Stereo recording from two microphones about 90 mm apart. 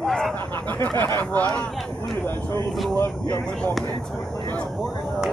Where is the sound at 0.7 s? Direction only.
20° left (ahead or behind).